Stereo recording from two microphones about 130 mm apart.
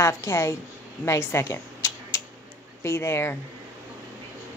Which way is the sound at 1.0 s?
20° left (ahead or behind).